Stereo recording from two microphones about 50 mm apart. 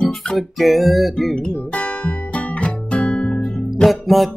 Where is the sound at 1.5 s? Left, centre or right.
Left.